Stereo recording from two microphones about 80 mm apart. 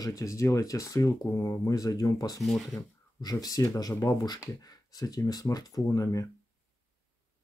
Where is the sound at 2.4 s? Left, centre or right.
Centre.